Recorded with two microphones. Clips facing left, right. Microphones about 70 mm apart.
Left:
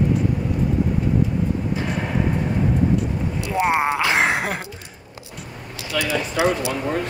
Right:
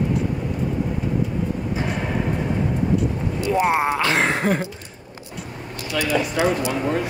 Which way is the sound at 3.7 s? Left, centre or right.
Centre.